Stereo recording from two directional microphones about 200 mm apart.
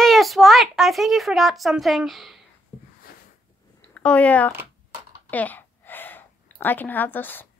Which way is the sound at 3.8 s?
10° left (ahead or behind).